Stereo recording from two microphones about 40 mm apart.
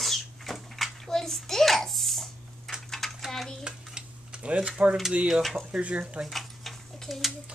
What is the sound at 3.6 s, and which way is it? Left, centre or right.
Stir, right.